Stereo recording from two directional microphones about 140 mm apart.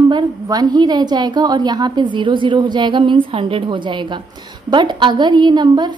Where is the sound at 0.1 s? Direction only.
30° right (ahead or behind).